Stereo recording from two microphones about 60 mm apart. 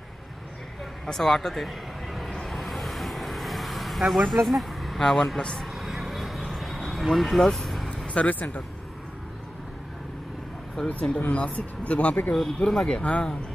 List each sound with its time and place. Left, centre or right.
1.0 s speech: centre
2.4 s vehicle: centre
4.5 s speech: centre
5.8 s vehicle: centre
8.1 s speech: left
10.9 s speech: left
12.4 s speech: centre